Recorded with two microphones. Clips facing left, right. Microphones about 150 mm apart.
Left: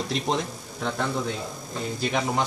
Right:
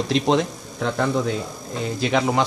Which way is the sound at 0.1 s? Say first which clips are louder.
Right 7 dB; 90° right.